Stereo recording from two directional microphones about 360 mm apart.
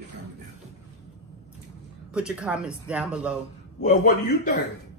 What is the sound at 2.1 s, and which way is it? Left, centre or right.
Speech, centre.